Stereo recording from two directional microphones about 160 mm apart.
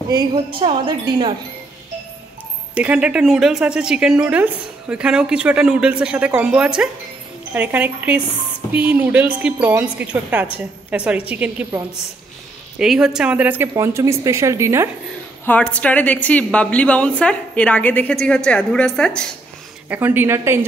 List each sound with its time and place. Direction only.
0.1 s a woman's voice: 25° right (ahead or behind)
2.7 s a woman's voice: 5° right (ahead or behind)
15.4 s a woman's voice: 10° left (ahead or behind)
19.9 s a woman's voice: 10° right (ahead or behind)